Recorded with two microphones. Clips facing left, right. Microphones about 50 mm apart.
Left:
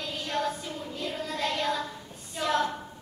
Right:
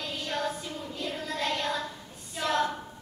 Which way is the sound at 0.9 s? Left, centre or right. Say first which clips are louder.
Even; centre.